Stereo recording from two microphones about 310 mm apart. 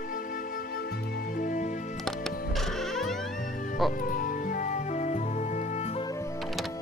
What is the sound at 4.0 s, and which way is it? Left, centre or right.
Music, left.